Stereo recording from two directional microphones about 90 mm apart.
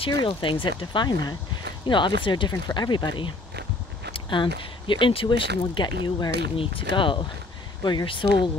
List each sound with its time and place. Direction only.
0.0 s speech: 65° left (ahead or behind)
4.1 s speech: 70° left (ahead or behind); by 6.3 s 50° left (ahead or behind)
6.5 s speech: 90° left; by 8.5 s 65° left (ahead or behind)